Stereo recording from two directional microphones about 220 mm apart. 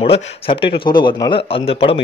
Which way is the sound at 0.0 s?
25° left (ahead or behind).